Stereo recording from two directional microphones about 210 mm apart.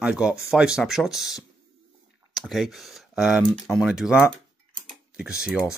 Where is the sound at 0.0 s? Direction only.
5° right (ahead or behind).